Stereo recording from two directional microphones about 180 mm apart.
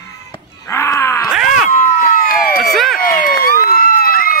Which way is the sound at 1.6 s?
45° left (ahead or behind).